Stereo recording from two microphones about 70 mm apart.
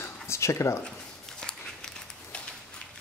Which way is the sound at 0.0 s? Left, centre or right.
Left.